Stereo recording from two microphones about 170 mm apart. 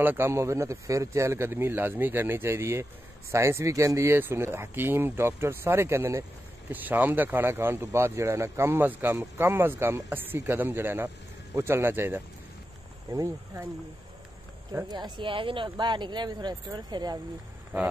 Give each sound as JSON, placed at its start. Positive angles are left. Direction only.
{"t": 0.0, "sound": "speech", "side_deg": -15}
{"t": 14.7, "sound": "speech", "side_deg": -20}